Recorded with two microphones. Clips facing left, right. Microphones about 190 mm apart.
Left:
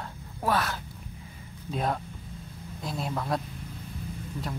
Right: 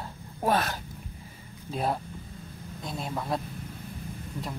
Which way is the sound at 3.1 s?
5° right (ahead or behind).